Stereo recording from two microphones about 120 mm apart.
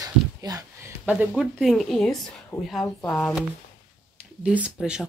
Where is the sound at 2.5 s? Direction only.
20° left (ahead or behind).